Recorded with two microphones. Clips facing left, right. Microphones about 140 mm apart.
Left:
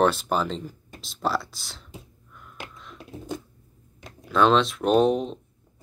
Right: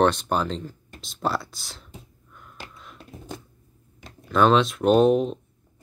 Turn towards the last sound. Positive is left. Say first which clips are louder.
# right 3 dB
turn(degrees=0)  # may be behind; listen again after turning